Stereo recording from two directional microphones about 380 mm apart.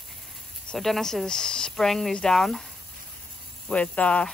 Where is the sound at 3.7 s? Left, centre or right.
Centre.